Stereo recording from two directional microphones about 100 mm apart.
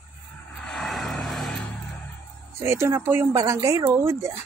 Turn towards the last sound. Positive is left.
turn(degrees=-25)  # may be behind; listen again after turning